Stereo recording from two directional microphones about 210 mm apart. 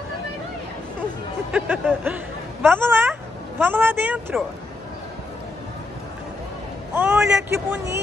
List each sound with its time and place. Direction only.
1.5 s a woman's voice: 5° right (ahead or behind)
6.9 s vehicle: 10° right (ahead or behind)
7.5 s speech: 15° right (ahead or behind)